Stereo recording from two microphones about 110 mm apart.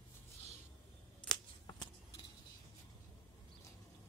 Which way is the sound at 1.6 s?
45° left (ahead or behind).